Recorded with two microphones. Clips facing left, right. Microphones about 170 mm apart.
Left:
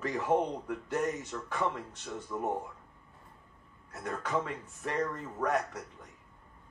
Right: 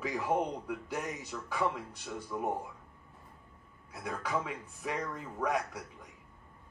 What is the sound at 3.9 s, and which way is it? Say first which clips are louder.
Speech: left 1 dB; 5° right (ahead or behind).